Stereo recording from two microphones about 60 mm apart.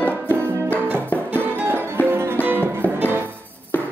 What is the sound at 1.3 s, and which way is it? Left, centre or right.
Music, right.